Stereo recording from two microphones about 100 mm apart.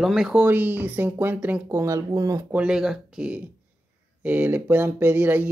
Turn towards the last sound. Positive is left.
turn(degrees=-20)  # may be behind; listen again after turning